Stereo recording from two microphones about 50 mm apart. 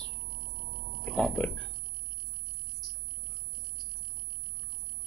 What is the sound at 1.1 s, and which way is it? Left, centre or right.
Speech, centre.